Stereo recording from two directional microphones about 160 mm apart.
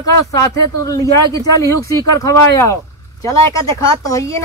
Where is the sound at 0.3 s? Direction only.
20° left (ahead or behind).